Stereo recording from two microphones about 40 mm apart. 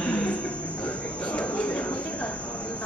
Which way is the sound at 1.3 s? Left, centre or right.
Left.